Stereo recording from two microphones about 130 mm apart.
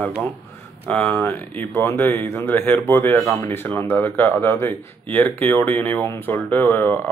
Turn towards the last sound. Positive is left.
turn(degrees=15)  # may be behind; listen again after turning